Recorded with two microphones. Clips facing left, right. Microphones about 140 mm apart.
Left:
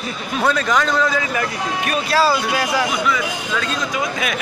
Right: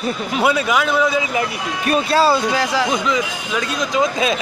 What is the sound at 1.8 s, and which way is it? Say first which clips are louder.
Speech: right 3 dB; 30° right (ahead or behind).